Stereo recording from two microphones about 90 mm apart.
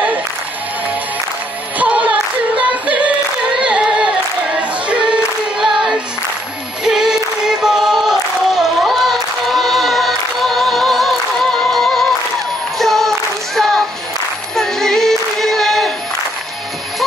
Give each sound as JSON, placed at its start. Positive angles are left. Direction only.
{"t": 1.8, "sound": "singing", "side_deg": -15}
{"t": 3.6, "sound": "singing", "side_deg": -10}
{"t": 5.6, "sound": "child singing", "side_deg": -5}
{"t": 6.8, "sound": "singing", "side_deg": -5}
{"t": 12.7, "sound": "music", "side_deg": 5}
{"t": 13.6, "sound": "a sound", "side_deg": 5}
{"t": 14.5, "sound": "female singing", "side_deg": 5}